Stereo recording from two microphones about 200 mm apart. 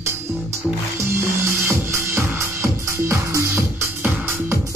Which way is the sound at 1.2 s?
15° right (ahead or behind).